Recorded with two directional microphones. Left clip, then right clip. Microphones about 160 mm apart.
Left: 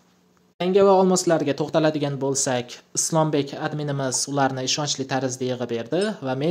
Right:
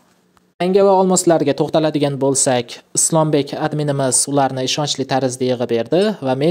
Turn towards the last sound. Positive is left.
turn(degrees=-40)  # may be behind; listen again after turning